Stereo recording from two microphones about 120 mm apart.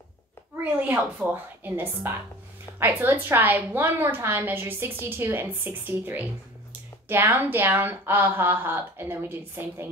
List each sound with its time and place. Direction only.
0.7 s speech: 15° right (ahead or behind)